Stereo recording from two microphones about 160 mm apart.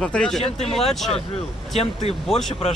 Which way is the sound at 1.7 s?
40° left (ahead or behind).